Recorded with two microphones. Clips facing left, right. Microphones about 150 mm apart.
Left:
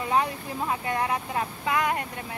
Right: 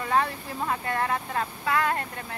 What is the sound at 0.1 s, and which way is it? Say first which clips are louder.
Speech: even; 15° left (ahead or behind).